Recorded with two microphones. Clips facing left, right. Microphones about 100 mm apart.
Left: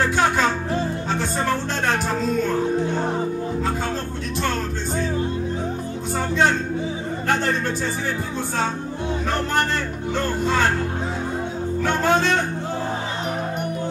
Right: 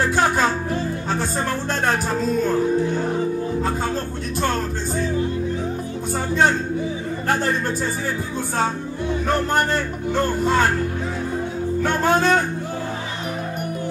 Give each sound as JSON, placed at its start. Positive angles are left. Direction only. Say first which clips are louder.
{"t": 11.8, "sound": "music", "louder": "right 1 dB", "side_deg": -40}